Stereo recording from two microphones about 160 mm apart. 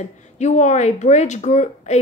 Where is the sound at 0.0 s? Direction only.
45° left (ahead or behind).